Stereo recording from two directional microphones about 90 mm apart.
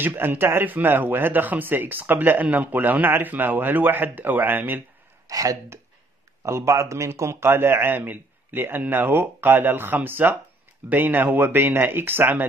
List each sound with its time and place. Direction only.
0.0 s speech: 20° right (ahead or behind)
5.3 s speech: 40° right (ahead or behind); by 12.4 s 20° right (ahead or behind)